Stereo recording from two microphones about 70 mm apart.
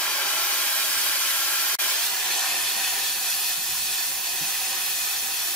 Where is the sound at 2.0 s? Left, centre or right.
Centre.